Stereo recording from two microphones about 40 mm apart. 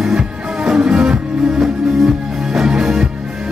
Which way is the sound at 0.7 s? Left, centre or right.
Centre.